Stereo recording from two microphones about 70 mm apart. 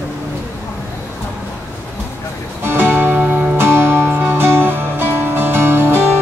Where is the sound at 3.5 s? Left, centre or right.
Right.